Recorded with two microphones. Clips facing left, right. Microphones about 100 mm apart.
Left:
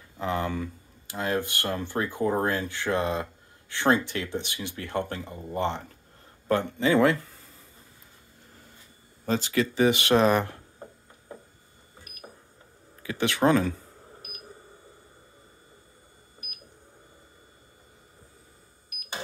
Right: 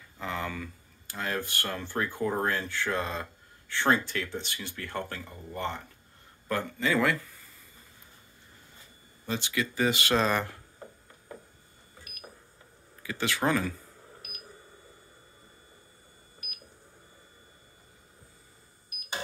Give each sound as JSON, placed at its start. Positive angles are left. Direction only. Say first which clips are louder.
{"t": 0.2, "sound": "speech", "louder": "left 6 dB", "side_deg": 25}
{"t": 9.2, "sound": "speech", "louder": "left 6 dB", "side_deg": 40}
{"t": 9.8, "sound": "speech", "louder": "left 5 dB", "side_deg": 20}
{"t": 13.2, "sound": "speech", "louder": "left 6 dB", "side_deg": 25}